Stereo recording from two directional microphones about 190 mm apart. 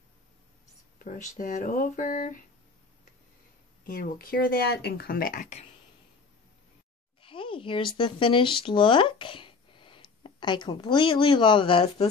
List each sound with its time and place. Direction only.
1.0 s speech: 45° left (ahead or behind)
3.8 s speech: 50° left (ahead or behind)
7.2 s speech: 25° left (ahead or behind)